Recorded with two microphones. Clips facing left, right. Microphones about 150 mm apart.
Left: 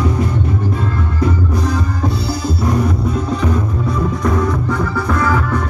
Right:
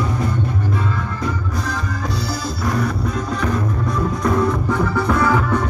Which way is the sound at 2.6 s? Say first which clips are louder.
Left 4 dB; 20° left (ahead or behind).